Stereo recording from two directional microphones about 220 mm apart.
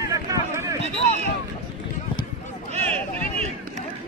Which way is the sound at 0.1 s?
15° right (ahead or behind).